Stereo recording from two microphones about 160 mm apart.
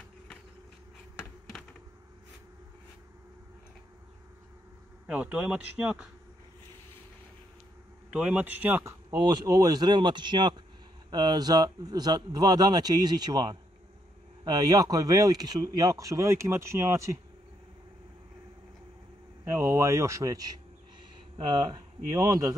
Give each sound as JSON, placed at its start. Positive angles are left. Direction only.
{"t": 5.0, "sound": "speech", "side_deg": -10}
{"t": 8.1, "sound": "speech", "side_deg": -10}
{"t": 9.1, "sound": "speech", "side_deg": -25}
{"t": 19.4, "sound": "speech", "side_deg": -15}